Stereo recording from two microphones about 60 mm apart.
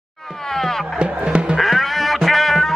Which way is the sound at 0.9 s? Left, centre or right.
Centre.